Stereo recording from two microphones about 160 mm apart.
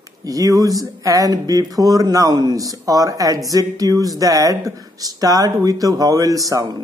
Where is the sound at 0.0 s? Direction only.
20° right (ahead or behind).